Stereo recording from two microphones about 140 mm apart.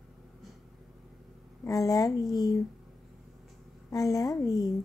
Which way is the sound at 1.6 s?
25° left (ahead or behind).